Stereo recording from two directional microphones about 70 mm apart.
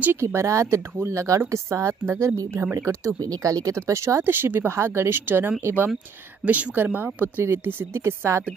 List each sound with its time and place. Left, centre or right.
0.2 s a woman's voice: right
3.3 s speech: right
6.4 s speech: right